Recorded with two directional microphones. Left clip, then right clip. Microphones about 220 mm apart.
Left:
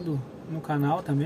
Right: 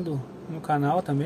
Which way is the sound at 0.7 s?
20° right (ahead or behind).